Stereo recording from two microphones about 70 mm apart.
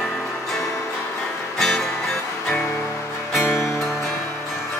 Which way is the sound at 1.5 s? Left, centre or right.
Centre.